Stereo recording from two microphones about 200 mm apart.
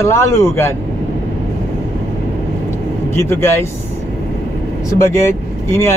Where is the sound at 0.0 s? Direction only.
15° left (ahead or behind).